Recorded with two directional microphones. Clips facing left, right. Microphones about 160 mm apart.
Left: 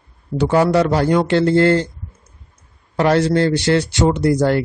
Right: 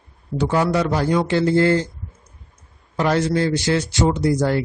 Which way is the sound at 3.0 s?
65° left (ahead or behind).